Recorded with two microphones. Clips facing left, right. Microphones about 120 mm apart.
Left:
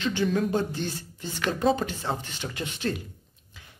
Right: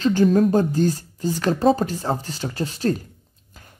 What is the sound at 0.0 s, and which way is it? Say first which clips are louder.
Speech: right 9 dB; 40° right (ahead or behind).